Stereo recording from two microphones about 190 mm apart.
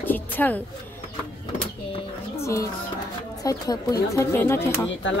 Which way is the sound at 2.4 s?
15° left (ahead or behind).